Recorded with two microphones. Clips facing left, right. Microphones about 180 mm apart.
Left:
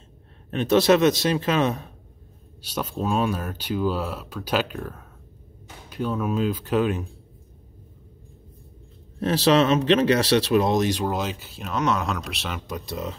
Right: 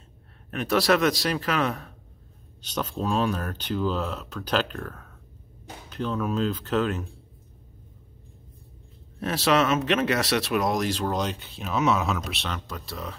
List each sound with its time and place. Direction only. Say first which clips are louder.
0.5 s speech: left 4 dB; 25° left (ahead or behind)
2.6 s speech: left 1 dB; 10° left (ahead or behind)
9.2 s speech: left 4 dB; 30° left (ahead or behind)
11.1 s speech: even; 5° left (ahead or behind)
12.5 s speech: left 5 dB; 15° left (ahead or behind)